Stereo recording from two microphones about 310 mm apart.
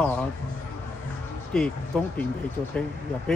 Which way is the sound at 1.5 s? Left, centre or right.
Centre.